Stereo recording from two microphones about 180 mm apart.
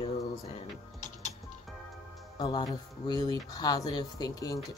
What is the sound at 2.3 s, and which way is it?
Speech, 25° left (ahead or behind).